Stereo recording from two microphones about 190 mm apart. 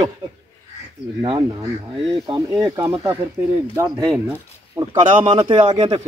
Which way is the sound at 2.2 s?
20° right (ahead or behind).